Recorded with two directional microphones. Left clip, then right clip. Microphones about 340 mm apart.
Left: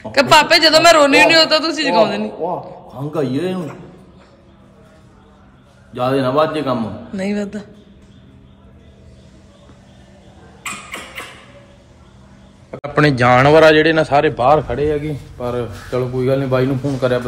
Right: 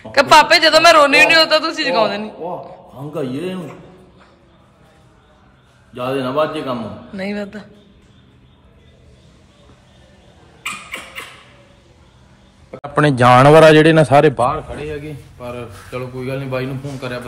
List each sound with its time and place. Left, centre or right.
0.0 s a man's voice: centre
5.9 s a man's voice: centre
12.7 s a man's voice: centre
14.9 s speech: left